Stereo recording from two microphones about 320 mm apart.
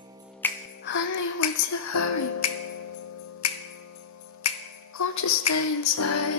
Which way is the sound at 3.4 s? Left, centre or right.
Left.